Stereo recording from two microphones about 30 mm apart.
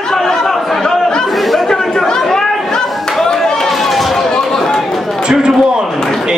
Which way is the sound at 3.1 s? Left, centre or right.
Centre.